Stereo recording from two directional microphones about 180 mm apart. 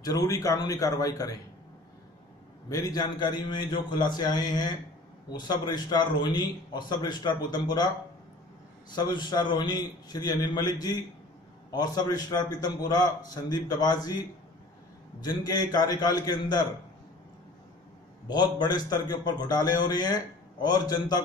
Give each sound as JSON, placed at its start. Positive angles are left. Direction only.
{"t": 0.0, "sound": "a man's voice", "side_deg": 20}
{"t": 2.7, "sound": "a man's voice", "side_deg": 20}
{"t": 8.9, "sound": "a man's voice", "side_deg": 25}
{"t": 18.3, "sound": "a man's voice", "side_deg": 25}